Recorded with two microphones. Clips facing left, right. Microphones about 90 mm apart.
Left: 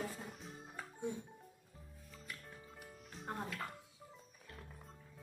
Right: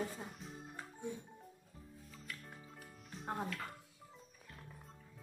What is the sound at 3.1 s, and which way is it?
Music, centre (ahead or behind).